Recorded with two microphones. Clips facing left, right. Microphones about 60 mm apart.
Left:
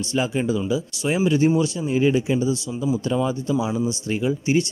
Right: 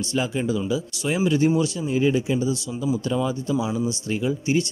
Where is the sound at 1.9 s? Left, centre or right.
Left.